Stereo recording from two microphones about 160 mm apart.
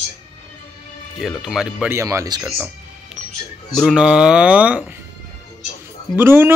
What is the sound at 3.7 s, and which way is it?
Speech, centre (ahead or behind).